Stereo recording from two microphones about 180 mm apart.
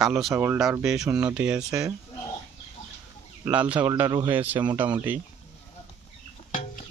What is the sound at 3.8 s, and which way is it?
Speech, 20° right (ahead or behind).